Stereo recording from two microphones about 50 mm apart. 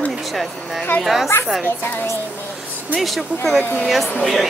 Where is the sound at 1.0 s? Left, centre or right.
Centre.